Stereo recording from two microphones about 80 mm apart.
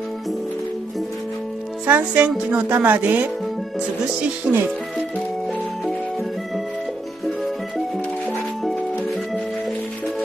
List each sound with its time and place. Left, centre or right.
1.9 s speech: centre